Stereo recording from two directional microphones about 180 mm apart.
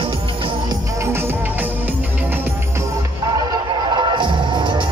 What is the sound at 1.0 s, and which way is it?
Music, 15° right (ahead or behind).